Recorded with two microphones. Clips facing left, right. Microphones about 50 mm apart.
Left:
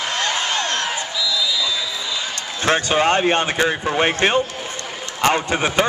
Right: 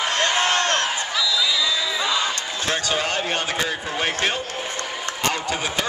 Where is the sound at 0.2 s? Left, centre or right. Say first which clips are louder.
Right 2 dB; centre.